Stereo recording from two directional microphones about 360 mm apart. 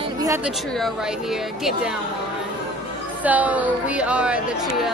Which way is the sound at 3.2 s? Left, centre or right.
Centre.